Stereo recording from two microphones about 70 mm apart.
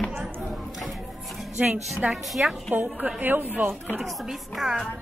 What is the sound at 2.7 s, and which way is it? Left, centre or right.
Speech, right.